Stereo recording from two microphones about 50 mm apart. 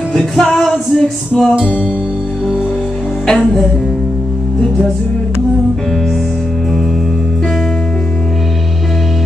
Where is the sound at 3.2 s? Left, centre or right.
Centre.